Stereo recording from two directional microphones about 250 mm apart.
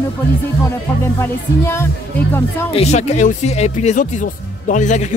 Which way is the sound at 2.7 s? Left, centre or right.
Left.